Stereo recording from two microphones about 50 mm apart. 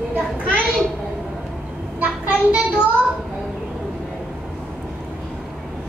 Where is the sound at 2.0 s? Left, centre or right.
Right.